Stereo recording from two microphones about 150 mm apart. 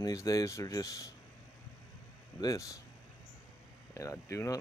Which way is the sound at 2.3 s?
20° left (ahead or behind).